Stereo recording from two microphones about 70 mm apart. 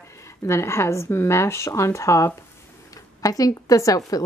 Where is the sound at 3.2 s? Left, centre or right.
Left.